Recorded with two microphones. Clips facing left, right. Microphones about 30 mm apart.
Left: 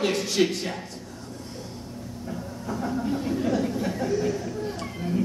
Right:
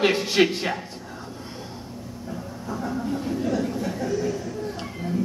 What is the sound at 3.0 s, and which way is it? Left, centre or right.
Speech, centre.